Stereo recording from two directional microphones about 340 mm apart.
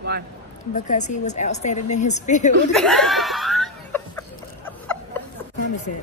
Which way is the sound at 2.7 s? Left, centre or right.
Centre.